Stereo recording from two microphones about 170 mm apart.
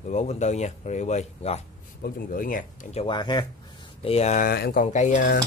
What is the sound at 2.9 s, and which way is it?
Speech, 30° left (ahead or behind).